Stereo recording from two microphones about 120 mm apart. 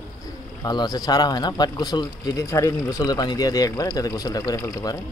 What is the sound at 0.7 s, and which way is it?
Speech, 35° left (ahead or behind).